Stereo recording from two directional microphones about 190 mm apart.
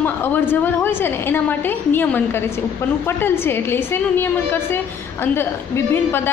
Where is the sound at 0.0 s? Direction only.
10° left (ahead or behind).